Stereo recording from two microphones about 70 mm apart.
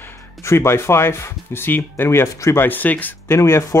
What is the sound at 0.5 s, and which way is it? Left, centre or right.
Speech, left.